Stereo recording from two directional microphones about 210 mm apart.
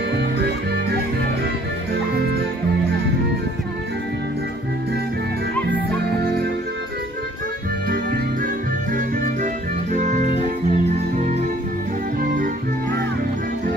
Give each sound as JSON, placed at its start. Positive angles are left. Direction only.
{"t": 7.9, "sound": "music", "side_deg": -40}
{"t": 9.9, "sound": "music", "side_deg": -35}